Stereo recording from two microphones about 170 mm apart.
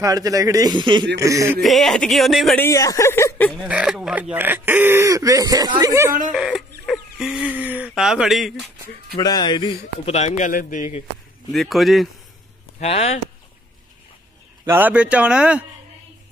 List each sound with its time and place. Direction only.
0.0 s a man's voice: 20° right (ahead or behind)
1.6 s speech: centre (ahead or behind)
2.6 s speech: 20° left (ahead or behind)
3.6 s speech: 5° right (ahead or behind)
6.3 s speech: 5° right (ahead or behind)
9.2 s a man's voice: 25° left (ahead or behind); by 11.1 s 45° left (ahead or behind)
11.5 s speech: centre (ahead or behind)
12.8 s a man's voice: 40° left (ahead or behind)
14.7 s speech: 10° right (ahead or behind)